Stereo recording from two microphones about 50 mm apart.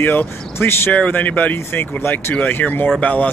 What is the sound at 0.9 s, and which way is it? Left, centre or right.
Speech, left.